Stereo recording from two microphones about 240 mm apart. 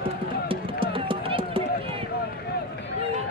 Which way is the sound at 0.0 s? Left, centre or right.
Right.